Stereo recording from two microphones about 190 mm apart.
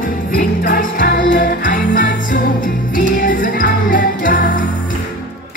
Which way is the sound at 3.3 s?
45° left (ahead or behind).